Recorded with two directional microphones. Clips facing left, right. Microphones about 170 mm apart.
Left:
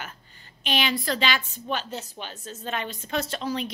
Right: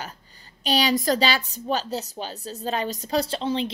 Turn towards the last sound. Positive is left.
turn(degrees=-25)  # may be behind; listen again after turning